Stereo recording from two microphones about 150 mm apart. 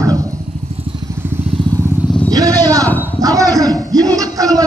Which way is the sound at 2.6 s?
25° right (ahead or behind).